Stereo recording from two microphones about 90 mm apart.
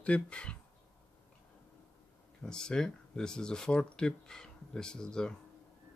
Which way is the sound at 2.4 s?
10° left (ahead or behind).